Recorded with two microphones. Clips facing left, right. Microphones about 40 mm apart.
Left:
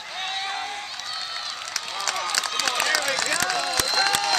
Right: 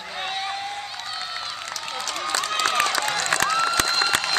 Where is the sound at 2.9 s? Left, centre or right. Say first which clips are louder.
Even; right.